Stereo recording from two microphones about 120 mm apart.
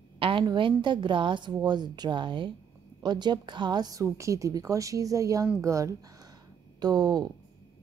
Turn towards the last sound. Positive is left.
turn(degrees=-35)  # may be behind; listen again after turning